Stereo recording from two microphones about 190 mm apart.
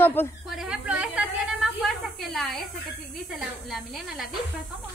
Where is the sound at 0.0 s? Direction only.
10° left (ahead or behind).